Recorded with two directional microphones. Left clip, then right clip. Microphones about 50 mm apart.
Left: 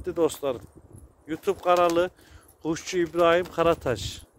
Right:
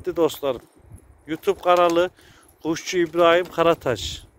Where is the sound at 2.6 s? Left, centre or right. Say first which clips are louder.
Right 4 dB; left.